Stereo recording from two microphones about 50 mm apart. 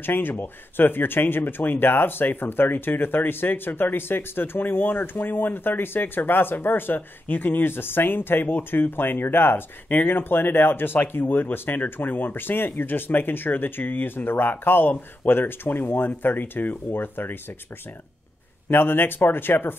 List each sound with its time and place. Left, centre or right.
0.0 s speech: left
18.7 s speech: left